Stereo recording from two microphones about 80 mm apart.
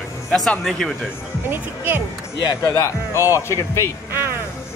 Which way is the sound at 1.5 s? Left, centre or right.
Right.